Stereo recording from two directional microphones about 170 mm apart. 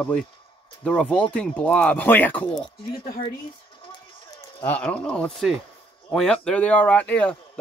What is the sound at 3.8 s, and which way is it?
Run, 30° left (ahead or behind).